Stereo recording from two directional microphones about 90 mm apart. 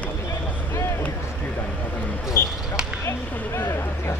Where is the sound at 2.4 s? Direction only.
25° left (ahead or behind).